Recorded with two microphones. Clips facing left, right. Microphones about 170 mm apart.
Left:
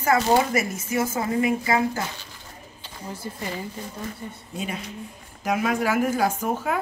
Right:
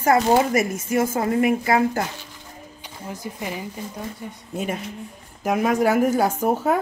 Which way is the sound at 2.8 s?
15° right (ahead or behind).